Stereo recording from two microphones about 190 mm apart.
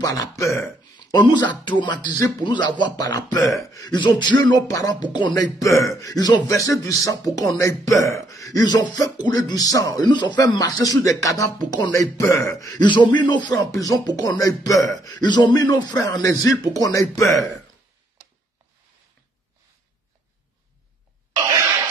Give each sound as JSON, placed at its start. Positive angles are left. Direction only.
{"t": 0.0, "sound": "speech", "side_deg": 20}
{"t": 3.3, "sound": "speech", "side_deg": 0}
{"t": 3.7, "sound": "speech", "side_deg": 20}